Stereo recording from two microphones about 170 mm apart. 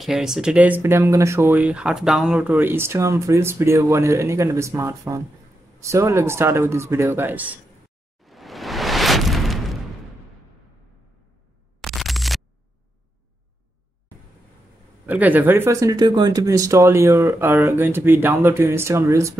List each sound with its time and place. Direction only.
0.0 s speech: 5° right (ahead or behind)
8.2 s a sound: centre (ahead or behind)
11.8 s scratch: centre (ahead or behind)
15.0 s speech: 10° right (ahead or behind)